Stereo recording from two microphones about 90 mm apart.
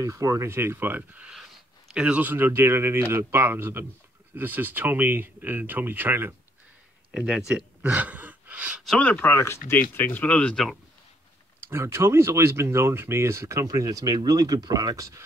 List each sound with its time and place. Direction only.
0.0 s speech: 35° right (ahead or behind)
7.1 s speech: 10° right (ahead or behind)
9.0 s speech: 20° left (ahead or behind)
11.6 s speech: 30° right (ahead or behind)